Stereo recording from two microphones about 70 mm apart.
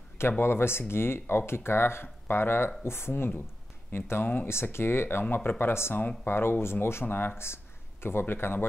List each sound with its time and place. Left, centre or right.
0.2 s speech: left